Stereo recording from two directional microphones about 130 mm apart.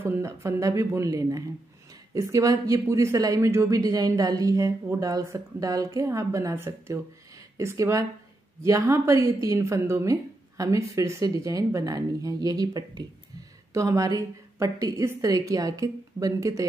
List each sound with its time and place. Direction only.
0.0 s speech: 20° right (ahead or behind)